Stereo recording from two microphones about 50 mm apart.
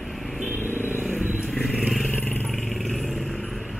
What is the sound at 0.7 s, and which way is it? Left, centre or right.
Vehicle, left.